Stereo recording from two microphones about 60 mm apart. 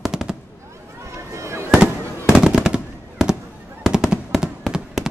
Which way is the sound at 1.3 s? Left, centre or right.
Right.